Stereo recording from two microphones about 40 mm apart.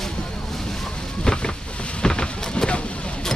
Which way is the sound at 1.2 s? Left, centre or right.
Left.